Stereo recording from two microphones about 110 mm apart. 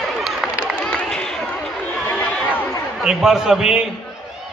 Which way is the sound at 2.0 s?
15° left (ahead or behind).